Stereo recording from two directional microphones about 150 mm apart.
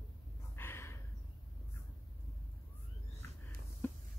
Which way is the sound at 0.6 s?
15° left (ahead or behind).